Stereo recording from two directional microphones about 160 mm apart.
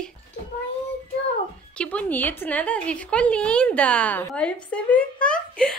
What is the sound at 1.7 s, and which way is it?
A woman's voice, 10° left (ahead or behind).